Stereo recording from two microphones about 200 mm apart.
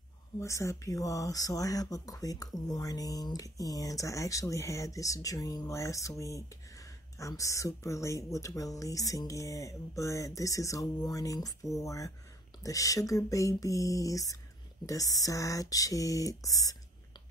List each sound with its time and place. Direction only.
0.4 s speech: 15° left (ahead or behind)